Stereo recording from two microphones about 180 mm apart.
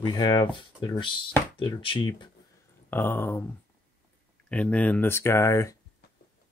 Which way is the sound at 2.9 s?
10° left (ahead or behind).